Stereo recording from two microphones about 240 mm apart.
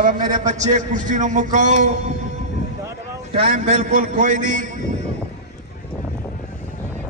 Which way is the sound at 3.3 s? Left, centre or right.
Right.